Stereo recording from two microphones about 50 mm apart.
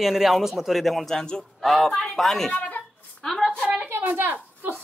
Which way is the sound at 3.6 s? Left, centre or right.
Centre.